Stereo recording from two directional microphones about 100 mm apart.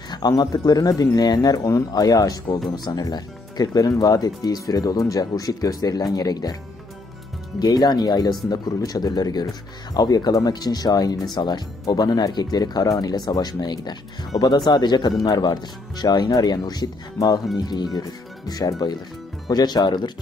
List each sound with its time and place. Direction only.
0.1 s speech: 45° left (ahead or behind)
7.5 s speech: 40° left (ahead or behind)